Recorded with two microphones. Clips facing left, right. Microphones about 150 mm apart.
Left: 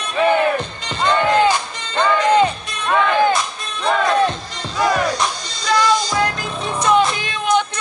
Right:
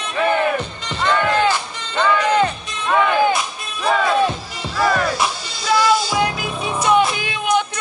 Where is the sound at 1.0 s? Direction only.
15° left (ahead or behind).